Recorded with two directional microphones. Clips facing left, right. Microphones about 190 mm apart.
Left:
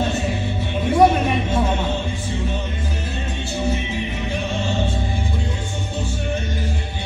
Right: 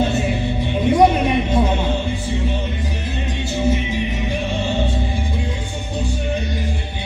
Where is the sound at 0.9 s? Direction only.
15° right (ahead or behind).